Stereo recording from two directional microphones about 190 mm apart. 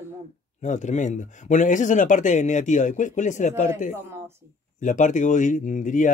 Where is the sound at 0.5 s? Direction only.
40° left (ahead or behind).